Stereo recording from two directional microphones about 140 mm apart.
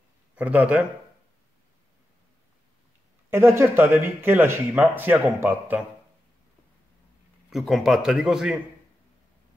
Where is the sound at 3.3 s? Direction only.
20° right (ahead or behind).